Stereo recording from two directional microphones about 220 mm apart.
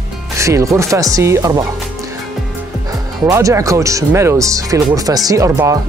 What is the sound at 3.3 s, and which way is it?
Speech, 15° right (ahead or behind).